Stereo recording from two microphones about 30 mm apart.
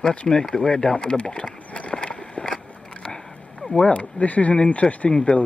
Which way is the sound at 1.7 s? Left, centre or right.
Left.